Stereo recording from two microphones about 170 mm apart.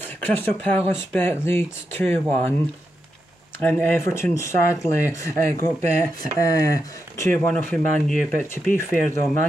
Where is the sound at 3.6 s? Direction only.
10° left (ahead or behind).